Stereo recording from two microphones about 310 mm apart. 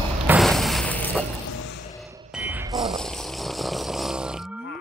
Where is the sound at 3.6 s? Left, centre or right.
Centre.